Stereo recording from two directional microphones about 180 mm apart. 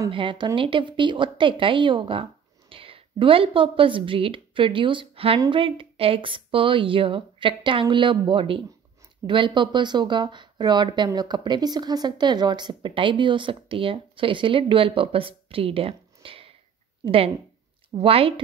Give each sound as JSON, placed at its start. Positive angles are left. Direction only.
{"t": 0.1, "sound": "a woman's voice", "side_deg": -25}